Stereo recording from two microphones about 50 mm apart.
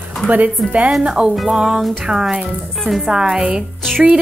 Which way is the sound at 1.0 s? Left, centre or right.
Centre.